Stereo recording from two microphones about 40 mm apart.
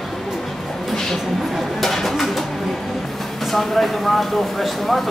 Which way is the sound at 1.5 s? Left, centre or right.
Centre.